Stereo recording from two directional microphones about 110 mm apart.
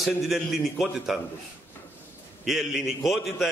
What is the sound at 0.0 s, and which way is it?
A man's voice, centre (ahead or behind).